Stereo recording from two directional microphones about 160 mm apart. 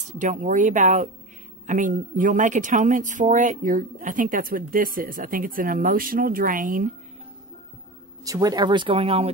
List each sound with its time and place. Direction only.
0.2 s speech: 50° right (ahead or behind)
8.2 s speech: 25° right (ahead or behind)